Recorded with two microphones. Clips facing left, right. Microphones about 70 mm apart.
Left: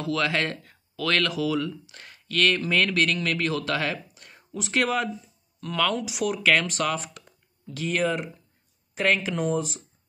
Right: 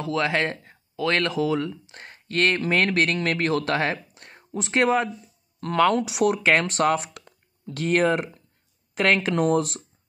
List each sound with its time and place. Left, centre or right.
0.0 s speech: right
5.6 s speech: right